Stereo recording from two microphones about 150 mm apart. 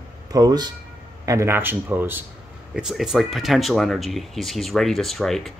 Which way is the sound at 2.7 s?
5° right (ahead or behind).